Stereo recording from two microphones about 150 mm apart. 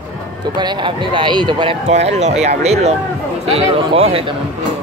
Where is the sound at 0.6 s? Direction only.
30° right (ahead or behind).